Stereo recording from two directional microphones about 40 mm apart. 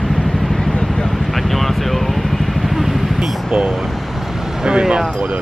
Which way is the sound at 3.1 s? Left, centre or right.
Right.